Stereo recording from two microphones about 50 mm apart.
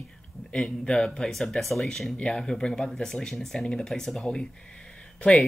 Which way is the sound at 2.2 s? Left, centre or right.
Centre.